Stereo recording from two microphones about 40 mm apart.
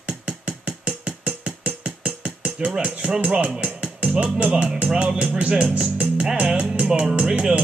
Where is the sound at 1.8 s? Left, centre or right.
Right.